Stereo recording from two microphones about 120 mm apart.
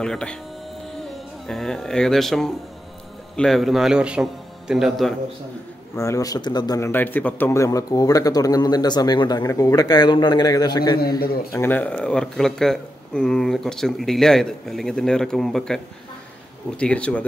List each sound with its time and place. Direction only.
0.0 s speech: 5° left (ahead or behind)
1.5 s speech: 5° left (ahead or behind)
5.9 s a man's voice: 25° left (ahead or behind)
6.8 s a man's voice: 15° left (ahead or behind); by 11.6 s 35° left (ahead or behind)
11.6 s speech: 15° left (ahead or behind)